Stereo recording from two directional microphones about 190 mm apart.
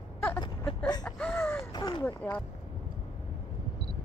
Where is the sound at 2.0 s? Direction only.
10° left (ahead or behind).